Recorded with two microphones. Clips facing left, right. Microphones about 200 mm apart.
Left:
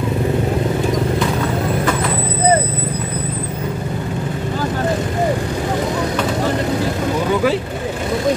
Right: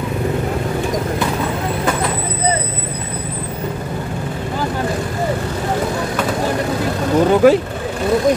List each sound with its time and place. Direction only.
7.4 s vehicle: 50° right (ahead or behind)